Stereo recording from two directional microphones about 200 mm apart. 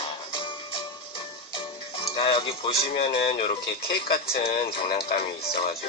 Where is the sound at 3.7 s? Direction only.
50° left (ahead or behind).